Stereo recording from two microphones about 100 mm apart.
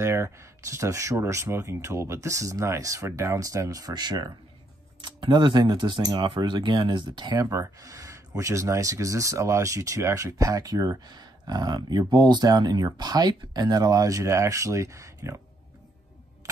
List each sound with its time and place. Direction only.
0.0 s speech: 30° right (ahead or behind)